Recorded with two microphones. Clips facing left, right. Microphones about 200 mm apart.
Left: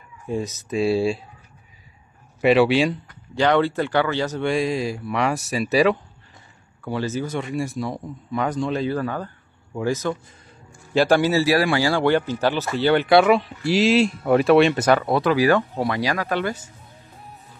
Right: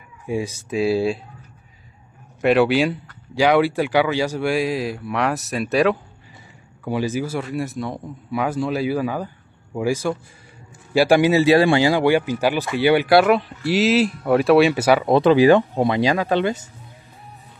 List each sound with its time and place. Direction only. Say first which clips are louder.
0.3 s speech: right 1 dB; 10° right (ahead or behind)
2.4 s speech: even; centre (ahead or behind)
6.8 s speech: right 3 dB; 15° right (ahead or behind)
15.0 s speech: right 5 dB; 25° right (ahead or behind)